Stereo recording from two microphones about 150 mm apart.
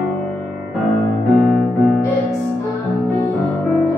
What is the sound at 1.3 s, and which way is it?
Music, centre (ahead or behind).